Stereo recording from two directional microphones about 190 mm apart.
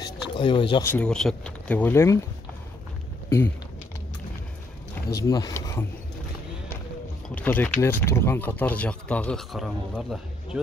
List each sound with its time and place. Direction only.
0.0 s a sound: 25° left (ahead or behind)
0.8 s speech: 5° left (ahead or behind)
3.3 s speech: 10° left (ahead or behind)
5.1 s speech: 20° left (ahead or behind)
7.2 s speech: 10° left (ahead or behind)